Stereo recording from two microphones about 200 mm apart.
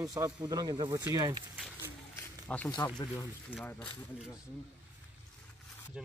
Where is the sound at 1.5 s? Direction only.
10° right (ahead or behind).